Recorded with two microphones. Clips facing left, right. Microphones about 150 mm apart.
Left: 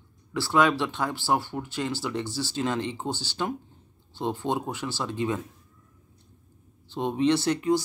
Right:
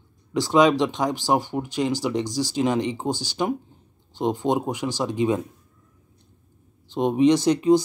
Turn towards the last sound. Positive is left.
turn(degrees=-20)  # may be behind; listen again after turning